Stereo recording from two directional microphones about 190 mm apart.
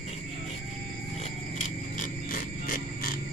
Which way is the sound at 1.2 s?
40° left (ahead or behind).